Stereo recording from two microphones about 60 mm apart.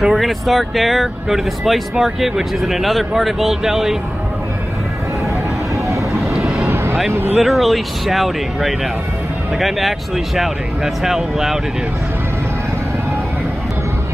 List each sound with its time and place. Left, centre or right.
0.0 s speech: centre
6.3 s vehicle: centre
6.7 s vehicle: right
7.1 s speech: right
7.4 s speech: centre